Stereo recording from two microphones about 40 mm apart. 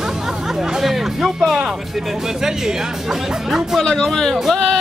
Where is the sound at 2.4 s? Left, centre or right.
Centre.